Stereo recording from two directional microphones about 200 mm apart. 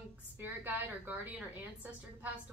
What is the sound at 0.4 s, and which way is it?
A woman's voice, 10° right (ahead or behind).